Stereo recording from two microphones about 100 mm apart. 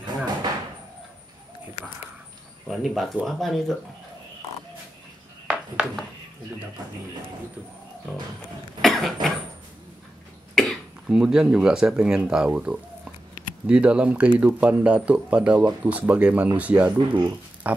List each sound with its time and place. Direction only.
0.0 s a sound: 45° right (ahead or behind)
2.7 s speech: centre (ahead or behind)
8.8 s speech: centre (ahead or behind)
10.5 s cough: 5° left (ahead or behind)
11.1 s speech: 5° right (ahead or behind)
17.6 s a sound: 15° right (ahead or behind)